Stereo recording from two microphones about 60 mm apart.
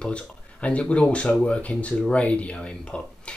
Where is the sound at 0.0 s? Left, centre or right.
Left.